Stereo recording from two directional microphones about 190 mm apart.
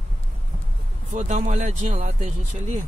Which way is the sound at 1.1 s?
35° right (ahead or behind).